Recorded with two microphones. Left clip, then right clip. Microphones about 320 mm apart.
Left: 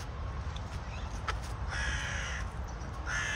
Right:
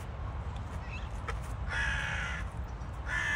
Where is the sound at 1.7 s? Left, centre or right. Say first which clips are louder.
Right 3 dB; centre.